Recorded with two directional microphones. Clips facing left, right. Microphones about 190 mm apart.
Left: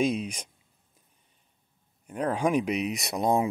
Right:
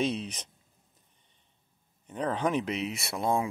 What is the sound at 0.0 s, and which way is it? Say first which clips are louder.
Speech: left 4 dB; 10° left (ahead or behind).